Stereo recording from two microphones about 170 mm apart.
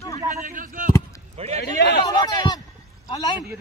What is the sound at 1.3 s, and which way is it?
Speech, 40° right (ahead or behind).